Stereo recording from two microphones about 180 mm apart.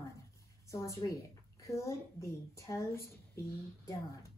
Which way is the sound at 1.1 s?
15° left (ahead or behind).